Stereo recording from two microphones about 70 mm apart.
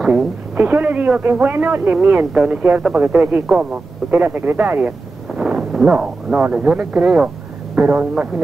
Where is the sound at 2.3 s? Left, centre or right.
Centre.